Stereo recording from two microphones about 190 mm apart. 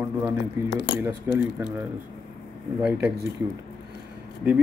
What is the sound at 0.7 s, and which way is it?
Speech, 70° left (ahead or behind).